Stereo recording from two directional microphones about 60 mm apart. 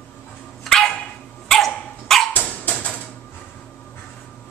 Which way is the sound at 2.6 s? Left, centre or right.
Left.